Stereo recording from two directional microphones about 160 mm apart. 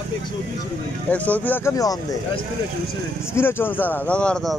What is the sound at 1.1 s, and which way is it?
Speech, 10° left (ahead or behind).